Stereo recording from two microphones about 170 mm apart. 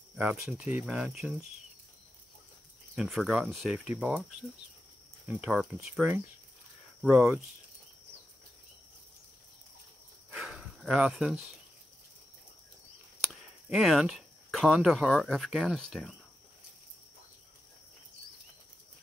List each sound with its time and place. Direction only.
0.1 s speech: 5° right (ahead or behind)
3.0 s speech: centre (ahead or behind)
10.3 s a sound: centre (ahead or behind)
13.3 s speech: centre (ahead or behind)